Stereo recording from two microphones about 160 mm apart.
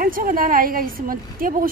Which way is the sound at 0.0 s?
60° right (ahead or behind).